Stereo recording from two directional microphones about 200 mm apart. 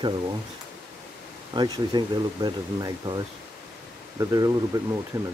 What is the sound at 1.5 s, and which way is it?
Speech, 20° right (ahead or behind).